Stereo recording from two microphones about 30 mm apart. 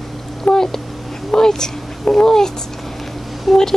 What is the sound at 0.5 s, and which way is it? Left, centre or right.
Cat, left.